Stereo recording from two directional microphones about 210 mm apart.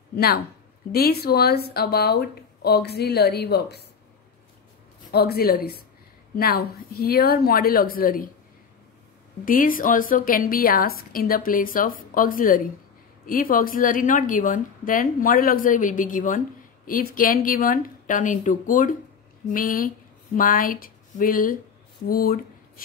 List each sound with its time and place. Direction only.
0.1 s speech: 50° left (ahead or behind)
5.1 s speech: 50° left (ahead or behind)
9.4 s a woman's voice: 40° left (ahead or behind)